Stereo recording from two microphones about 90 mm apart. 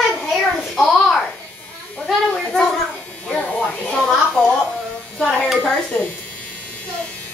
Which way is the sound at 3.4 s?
15° left (ahead or behind).